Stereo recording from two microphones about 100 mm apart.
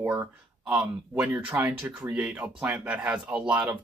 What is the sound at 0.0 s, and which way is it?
Speech, 15° right (ahead or behind).